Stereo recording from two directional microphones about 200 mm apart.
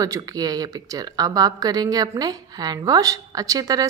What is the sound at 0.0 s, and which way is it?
Speech, 20° right (ahead or behind).